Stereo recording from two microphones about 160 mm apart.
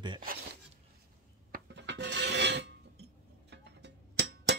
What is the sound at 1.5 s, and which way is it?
Filing, 90° right.